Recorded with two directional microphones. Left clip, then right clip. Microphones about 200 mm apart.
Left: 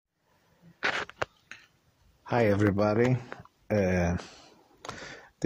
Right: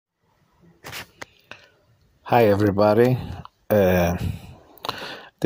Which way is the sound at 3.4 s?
20° right (ahead or behind).